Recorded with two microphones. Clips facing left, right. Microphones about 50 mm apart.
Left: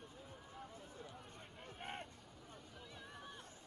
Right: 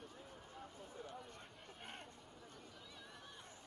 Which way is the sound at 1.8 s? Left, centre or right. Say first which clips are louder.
Left 6 dB; centre.